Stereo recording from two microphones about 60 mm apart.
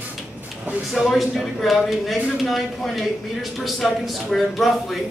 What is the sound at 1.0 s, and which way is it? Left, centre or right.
Speech, centre.